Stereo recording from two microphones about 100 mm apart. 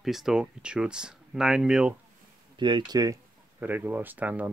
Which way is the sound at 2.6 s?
50° right (ahead or behind).